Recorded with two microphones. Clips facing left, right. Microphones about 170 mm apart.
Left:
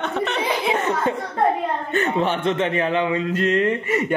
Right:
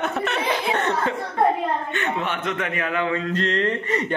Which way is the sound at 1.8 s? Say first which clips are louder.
Left 5 dB; 35° left (ahead or behind).